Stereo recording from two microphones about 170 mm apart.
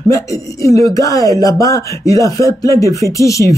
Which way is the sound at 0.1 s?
20° left (ahead or behind).